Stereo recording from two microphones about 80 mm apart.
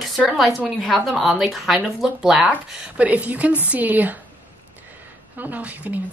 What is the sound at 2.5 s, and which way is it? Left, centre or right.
Speech, centre.